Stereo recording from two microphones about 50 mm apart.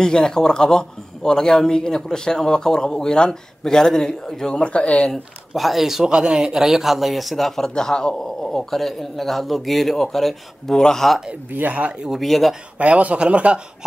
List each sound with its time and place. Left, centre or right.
0.0 s a man's voice: centre
5.5 s speech: centre
11.5 s speech: right
12.1 s speech: centre
12.7 s a man's voice: right